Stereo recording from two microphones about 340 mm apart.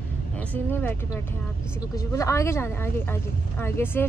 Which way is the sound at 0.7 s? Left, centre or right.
Centre.